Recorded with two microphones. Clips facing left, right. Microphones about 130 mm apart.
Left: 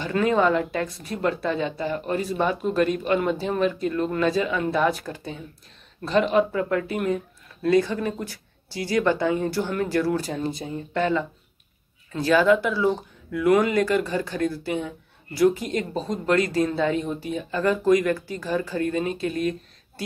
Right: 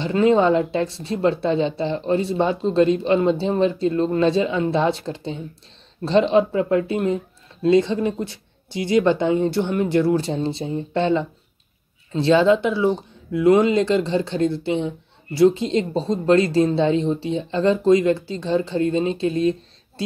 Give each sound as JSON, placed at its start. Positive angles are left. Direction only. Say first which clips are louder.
{"t": 0.0, "sound": "speech", "louder": "right 4 dB", "side_deg": -25}